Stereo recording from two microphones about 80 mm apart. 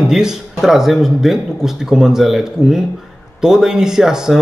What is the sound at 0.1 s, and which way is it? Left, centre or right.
Speech, centre.